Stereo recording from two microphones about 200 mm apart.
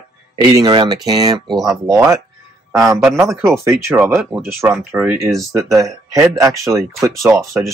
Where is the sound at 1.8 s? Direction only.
15° right (ahead or behind).